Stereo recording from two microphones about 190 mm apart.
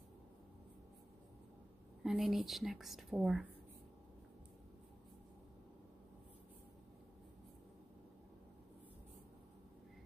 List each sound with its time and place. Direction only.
2.0 s a woman's voice: centre (ahead or behind)